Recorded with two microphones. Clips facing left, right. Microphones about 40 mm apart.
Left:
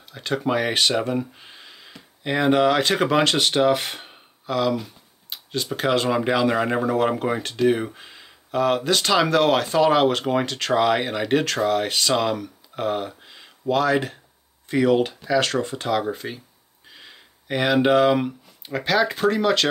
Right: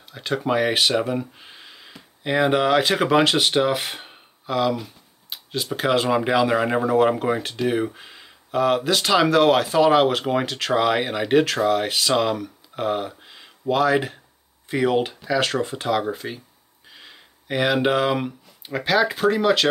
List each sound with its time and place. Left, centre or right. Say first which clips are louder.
0.1 s speech: right 1 dB; centre